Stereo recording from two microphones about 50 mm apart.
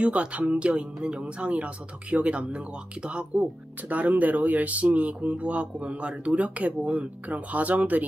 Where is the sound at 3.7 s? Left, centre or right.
Right.